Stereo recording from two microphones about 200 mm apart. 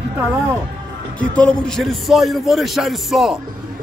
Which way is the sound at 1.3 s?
5° left (ahead or behind).